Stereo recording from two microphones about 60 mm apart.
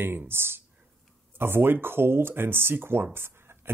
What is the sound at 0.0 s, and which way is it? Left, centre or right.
Speech, right.